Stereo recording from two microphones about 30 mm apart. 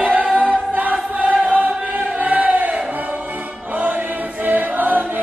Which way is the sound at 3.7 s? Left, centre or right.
Right.